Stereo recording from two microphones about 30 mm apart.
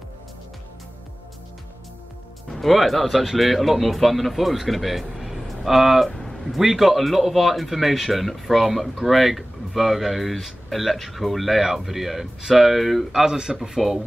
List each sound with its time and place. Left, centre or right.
2.5 s speech: centre
5.8 s speech: centre
6.0 s a sound: centre
6.4 s speech: centre
13.1 s a man's voice: right
13.7 s speech: centre